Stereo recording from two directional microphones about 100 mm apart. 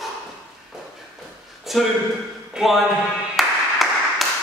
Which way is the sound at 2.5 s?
Centre (ahead or behind).